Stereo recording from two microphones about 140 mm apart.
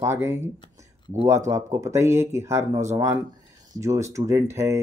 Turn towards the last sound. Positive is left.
turn(degrees=-20)  # may be behind; listen again after turning